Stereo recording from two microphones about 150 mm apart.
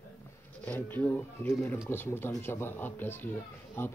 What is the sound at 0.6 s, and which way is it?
A man's voice, 10° left (ahead or behind).